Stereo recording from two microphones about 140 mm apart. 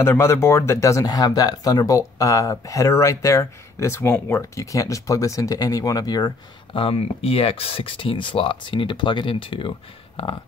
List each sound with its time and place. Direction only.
0.0 s speech: 20° left (ahead or behind)
6.8 s speech: 45° left (ahead or behind)